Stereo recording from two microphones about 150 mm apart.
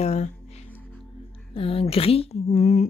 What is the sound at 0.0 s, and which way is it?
Music, 45° left (ahead or behind).